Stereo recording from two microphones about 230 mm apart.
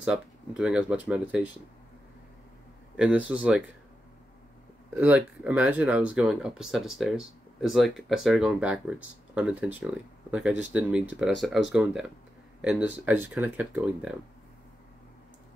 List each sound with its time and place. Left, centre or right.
0.0 s speech: centre
3.0 s speech: centre
5.0 s speech: centre